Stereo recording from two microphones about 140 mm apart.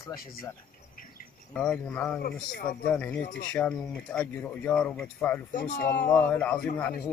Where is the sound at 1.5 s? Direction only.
10° left (ahead or behind).